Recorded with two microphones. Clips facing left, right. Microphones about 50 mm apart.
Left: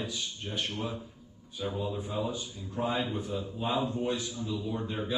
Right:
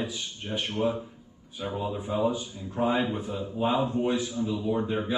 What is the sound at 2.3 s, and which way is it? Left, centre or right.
Speech, centre.